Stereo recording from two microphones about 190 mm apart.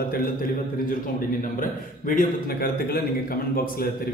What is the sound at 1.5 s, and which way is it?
A man's voice, 45° left (ahead or behind).